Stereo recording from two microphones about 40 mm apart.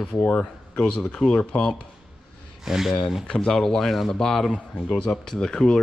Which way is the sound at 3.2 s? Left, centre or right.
Centre.